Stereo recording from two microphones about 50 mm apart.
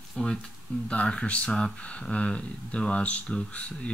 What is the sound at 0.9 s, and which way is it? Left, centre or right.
Speech, left.